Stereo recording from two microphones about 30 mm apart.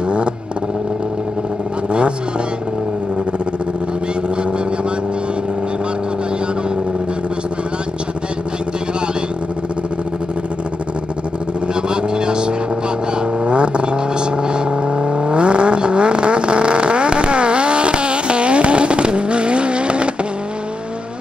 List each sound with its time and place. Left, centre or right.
11.7 s vehicle: right